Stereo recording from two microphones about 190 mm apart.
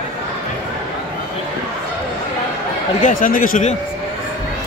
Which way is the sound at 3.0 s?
45° left (ahead or behind).